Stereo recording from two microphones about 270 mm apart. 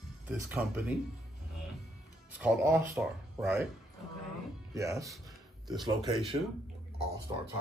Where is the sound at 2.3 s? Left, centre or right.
Centre.